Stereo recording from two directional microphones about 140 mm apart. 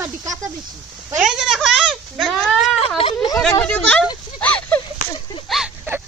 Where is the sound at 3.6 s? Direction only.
10° left (ahead or behind).